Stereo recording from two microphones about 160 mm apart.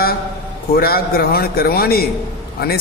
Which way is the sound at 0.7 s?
70° left (ahead or behind).